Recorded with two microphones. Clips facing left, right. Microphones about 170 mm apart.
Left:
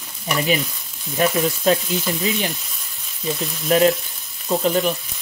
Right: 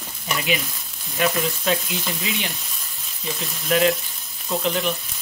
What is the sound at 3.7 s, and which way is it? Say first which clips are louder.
Frying: left 3 dB; 40° left (ahead or behind).